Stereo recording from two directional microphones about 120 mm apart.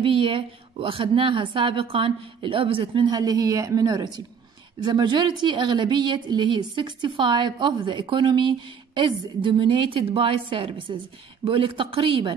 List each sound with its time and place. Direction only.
0.0 s a woman's voice: 45° right (ahead or behind)
3.2 s a woman's voice: 30° right (ahead or behind); by 12.4 s 45° right (ahead or behind)